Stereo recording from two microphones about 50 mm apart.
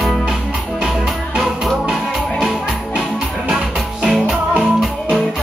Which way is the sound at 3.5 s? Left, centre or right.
Centre.